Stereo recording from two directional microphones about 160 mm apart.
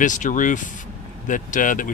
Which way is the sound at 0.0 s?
50° left (ahead or behind).